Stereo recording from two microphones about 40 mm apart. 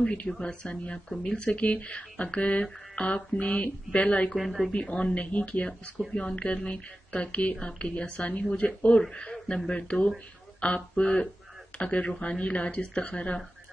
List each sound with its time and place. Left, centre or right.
0.4 s speech: left
4.4 s speech: centre
4.7 s speech: left